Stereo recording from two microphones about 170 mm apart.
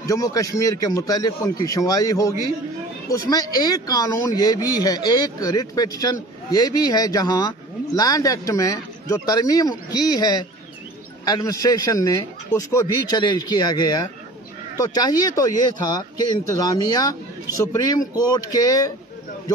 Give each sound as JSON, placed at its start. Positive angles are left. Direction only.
{"t": 0.1, "sound": "speech", "side_deg": 20}